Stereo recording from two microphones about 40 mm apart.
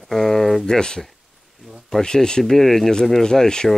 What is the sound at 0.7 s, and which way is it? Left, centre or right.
Speech, centre.